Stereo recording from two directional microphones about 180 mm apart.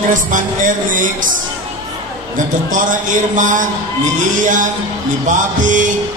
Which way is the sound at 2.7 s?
45° right (ahead or behind).